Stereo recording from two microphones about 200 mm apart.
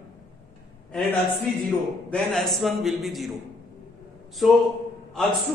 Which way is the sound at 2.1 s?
Centre (ahead or behind).